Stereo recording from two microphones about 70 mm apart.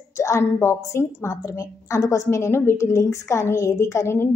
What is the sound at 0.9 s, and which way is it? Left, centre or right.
A woman's voice, left.